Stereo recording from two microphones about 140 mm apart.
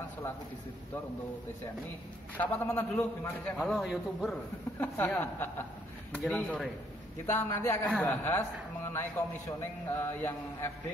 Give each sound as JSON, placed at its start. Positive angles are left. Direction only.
{"t": 2.3, "sound": "a man's voice", "side_deg": 10}
{"t": 4.7, "sound": "a man's voice", "side_deg": 10}
{"t": 7.2, "sound": "a man's voice", "side_deg": 15}
{"t": 9.6, "sound": "a man's voice", "side_deg": 15}